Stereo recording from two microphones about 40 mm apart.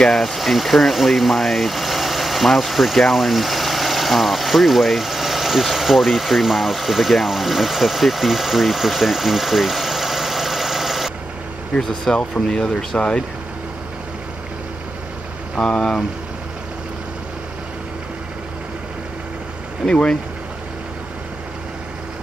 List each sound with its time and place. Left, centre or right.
0.1 s speech: centre
12.2 s speech: centre
15.5 s speech: left
19.9 s speech: left